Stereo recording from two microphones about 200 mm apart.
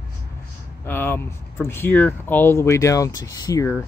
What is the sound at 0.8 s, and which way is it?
Speech, 10° left (ahead or behind).